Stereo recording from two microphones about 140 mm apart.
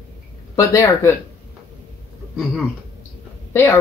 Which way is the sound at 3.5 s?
20° left (ahead or behind).